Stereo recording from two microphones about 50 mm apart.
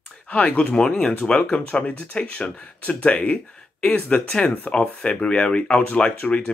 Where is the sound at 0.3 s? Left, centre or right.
Left.